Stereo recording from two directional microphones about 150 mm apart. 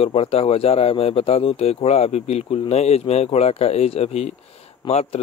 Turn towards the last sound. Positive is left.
turn(degrees=40)  # may be behind; listen again after turning